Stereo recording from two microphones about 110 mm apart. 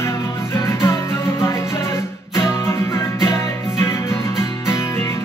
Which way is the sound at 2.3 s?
25° left (ahead or behind).